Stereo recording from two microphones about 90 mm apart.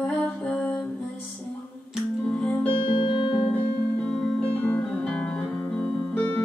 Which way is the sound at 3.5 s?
15° left (ahead or behind).